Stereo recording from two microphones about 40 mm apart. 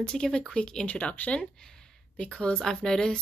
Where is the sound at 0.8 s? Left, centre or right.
Left.